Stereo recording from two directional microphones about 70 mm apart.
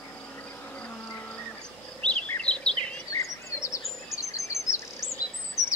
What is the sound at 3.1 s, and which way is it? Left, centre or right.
Chirp, left.